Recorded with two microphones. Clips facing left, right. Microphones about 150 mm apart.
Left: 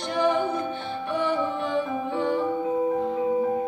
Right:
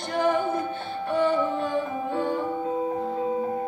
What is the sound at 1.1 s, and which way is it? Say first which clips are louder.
Music: right 3 dB; 50° right (ahead or behind).